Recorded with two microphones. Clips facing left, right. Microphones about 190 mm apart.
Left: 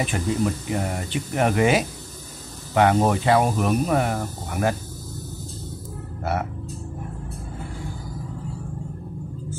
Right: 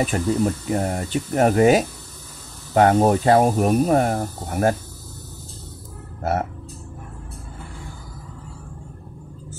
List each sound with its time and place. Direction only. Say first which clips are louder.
0.0 s speech: right 3 dB; 40° right (ahead or behind)